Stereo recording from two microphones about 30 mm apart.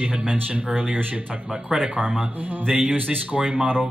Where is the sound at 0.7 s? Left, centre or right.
Right.